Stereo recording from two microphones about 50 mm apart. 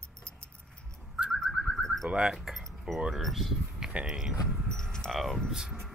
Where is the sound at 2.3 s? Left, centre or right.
Centre.